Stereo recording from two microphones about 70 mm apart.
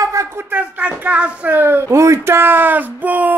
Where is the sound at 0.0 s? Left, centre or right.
Right.